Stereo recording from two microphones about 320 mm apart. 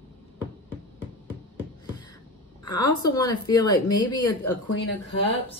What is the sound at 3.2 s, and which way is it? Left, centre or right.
Speech, centre.